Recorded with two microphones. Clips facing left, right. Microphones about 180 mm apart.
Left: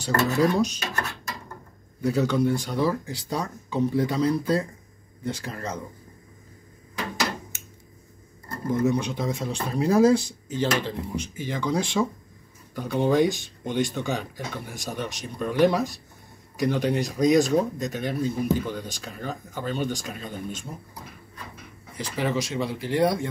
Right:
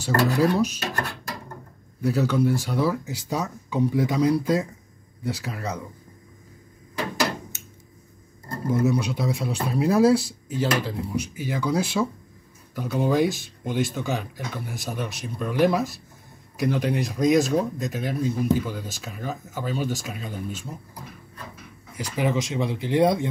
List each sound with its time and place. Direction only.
0.4 s speech: 5° right (ahead or behind)
2.0 s speech: 5° right (ahead or behind)
8.8 s speech: 10° right (ahead or behind)
21.9 s speech: 10° right (ahead or behind)